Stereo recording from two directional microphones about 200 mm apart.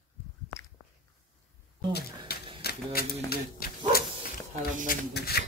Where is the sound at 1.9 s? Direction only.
50° left (ahead or behind).